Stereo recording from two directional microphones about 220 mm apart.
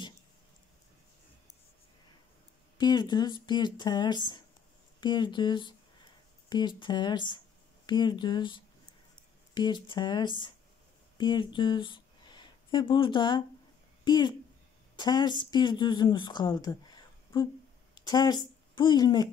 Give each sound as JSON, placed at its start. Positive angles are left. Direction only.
{"t": 2.8, "sound": "speech", "side_deg": 20}
{"t": 6.8, "sound": "a woman's voice", "side_deg": 20}